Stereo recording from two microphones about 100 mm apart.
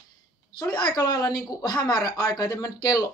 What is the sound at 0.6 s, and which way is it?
Speech, 50° left (ahead or behind).